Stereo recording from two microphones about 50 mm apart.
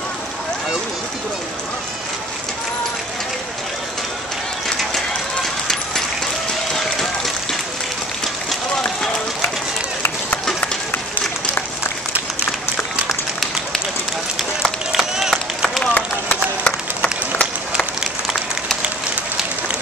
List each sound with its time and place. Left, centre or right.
4.6 s coin: centre
6.7 s run: centre
14.6 s run: centre
15.8 s a sound: left